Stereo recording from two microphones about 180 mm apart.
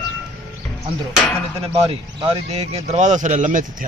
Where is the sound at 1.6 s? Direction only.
30° right (ahead or behind).